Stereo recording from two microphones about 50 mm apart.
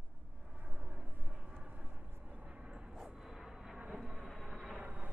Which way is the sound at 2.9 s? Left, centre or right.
Centre.